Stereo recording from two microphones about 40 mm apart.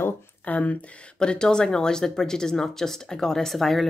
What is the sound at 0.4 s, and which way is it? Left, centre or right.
Speech, left.